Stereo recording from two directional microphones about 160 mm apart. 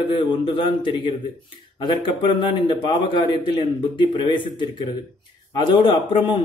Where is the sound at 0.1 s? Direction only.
30° left (ahead or behind).